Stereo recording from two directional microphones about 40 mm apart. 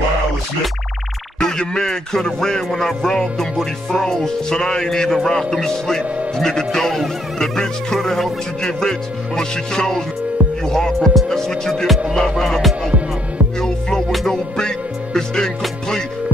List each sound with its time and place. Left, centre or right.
1.4 s speech: centre
11.7 s music: centre
12.2 s speech: centre
13.6 s music: centre
15.1 s speech: centre